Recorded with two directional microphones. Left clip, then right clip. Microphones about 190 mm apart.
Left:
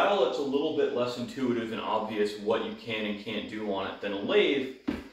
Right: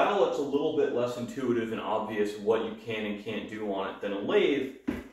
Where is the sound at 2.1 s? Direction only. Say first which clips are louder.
Right 1 dB; 15° right (ahead or behind).